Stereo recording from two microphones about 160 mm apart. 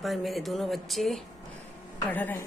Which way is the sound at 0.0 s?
Centre (ahead or behind).